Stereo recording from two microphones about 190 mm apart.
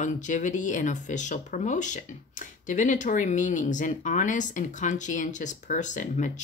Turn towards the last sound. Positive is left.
turn(degrees=40)  # may be behind; listen again after turning